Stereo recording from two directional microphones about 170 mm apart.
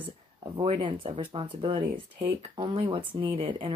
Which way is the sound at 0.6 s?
30° right (ahead or behind).